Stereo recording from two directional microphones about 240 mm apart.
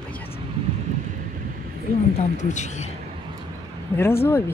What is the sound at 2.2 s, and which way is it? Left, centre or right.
Speech, left.